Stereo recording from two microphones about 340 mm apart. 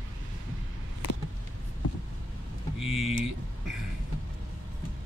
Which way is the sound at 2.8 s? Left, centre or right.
Centre.